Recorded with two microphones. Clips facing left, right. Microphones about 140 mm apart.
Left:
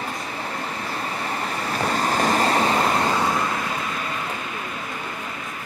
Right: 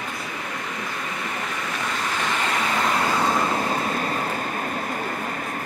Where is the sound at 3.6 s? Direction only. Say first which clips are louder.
Right 3 dB; 40° right (ahead or behind).